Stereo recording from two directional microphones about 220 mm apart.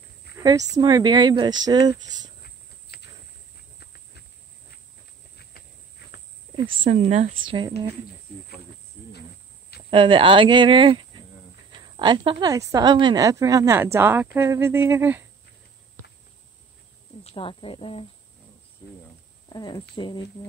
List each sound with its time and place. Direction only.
0.4 s speech: 15° right (ahead or behind)
2.4 s cricket: 45° left (ahead or behind)
3.8 s a sound: 50° left (ahead or behind)
6.8 s speech: 30° right (ahead or behind)
9.8 s a woman's voice: 25° right (ahead or behind)
17.2 s speech: 25° left (ahead or behind)
19.5 s speech: 20° left (ahead or behind)